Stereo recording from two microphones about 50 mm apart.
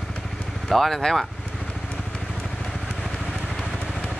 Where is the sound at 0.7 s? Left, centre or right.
Centre.